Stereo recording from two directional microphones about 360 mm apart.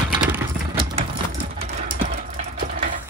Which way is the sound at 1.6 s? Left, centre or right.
Centre.